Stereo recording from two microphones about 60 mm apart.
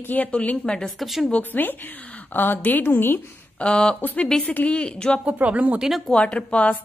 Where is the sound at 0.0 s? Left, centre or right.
Left.